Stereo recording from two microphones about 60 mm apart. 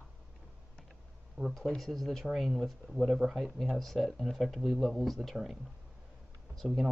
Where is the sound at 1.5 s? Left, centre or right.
Centre.